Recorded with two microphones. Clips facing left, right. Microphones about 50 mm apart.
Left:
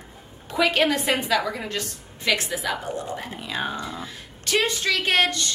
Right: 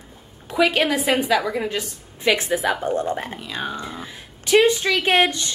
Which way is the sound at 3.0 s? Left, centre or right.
Right.